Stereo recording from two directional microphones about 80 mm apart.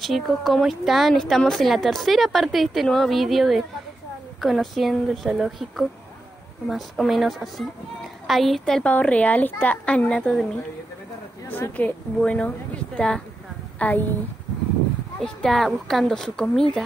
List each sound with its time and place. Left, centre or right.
0.0 s a woman's voice: centre
8.8 s a woman's voice: centre
11.4 s a woman's voice: left
15.1 s a woman's voice: centre